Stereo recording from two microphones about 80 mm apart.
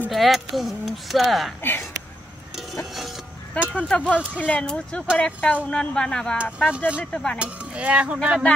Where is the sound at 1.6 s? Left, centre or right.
Left.